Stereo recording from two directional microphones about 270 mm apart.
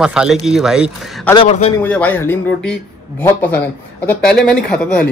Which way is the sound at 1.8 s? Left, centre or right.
Centre.